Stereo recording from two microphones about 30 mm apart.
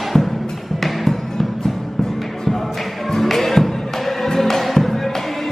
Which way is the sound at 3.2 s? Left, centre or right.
Centre.